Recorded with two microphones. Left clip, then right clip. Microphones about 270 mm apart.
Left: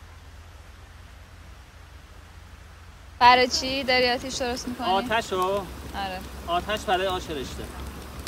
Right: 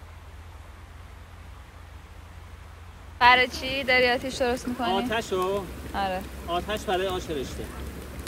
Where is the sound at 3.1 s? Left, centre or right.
Centre.